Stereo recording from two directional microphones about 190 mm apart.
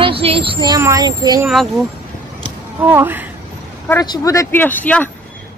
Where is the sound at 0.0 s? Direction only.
30° right (ahead or behind).